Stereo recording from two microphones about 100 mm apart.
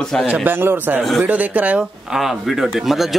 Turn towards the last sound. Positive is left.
turn(degrees=0)  # may be behind; listen again after turning